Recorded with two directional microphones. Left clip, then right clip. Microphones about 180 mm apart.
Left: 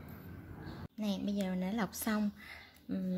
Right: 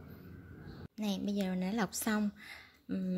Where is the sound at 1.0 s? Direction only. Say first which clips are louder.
Right 1 dB; 20° right (ahead or behind).